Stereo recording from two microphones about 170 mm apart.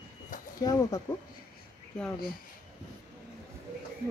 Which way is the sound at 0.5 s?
20° left (ahead or behind).